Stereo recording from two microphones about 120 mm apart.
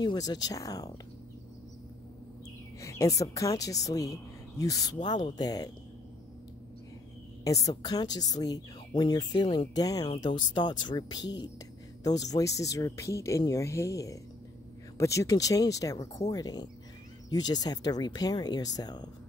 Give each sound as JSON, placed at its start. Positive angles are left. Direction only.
{"t": 0.0, "sound": "speech", "side_deg": 35}
{"t": 2.8, "sound": "speech", "side_deg": 25}
{"t": 7.4, "sound": "speech", "side_deg": 30}